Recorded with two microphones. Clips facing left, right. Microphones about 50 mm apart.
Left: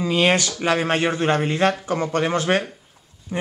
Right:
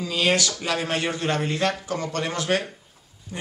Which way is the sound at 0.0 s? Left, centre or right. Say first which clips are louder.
Left 4 dB; left.